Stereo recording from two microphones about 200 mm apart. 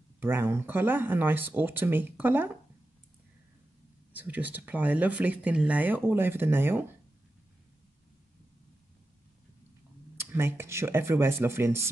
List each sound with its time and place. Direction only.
0.2 s speech: 10° right (ahead or behind)
4.1 s speech: 10° right (ahead or behind)
10.1 s speech: 10° right (ahead or behind)